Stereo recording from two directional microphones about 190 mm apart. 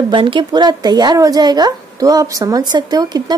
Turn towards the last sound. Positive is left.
turn(degrees=-20)  # may be behind; listen again after turning